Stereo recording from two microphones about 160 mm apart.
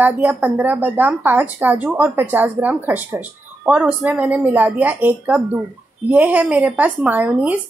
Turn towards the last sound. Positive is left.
turn(degrees=-10)  # may be behind; listen again after turning